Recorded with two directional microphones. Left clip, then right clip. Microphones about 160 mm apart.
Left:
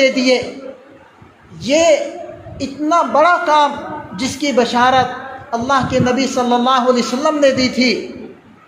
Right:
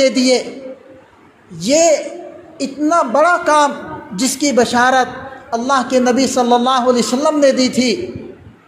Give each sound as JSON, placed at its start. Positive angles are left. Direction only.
{"t": 0.0, "sound": "a man's voice", "side_deg": -45}
{"t": 1.6, "sound": "a man's voice", "side_deg": -45}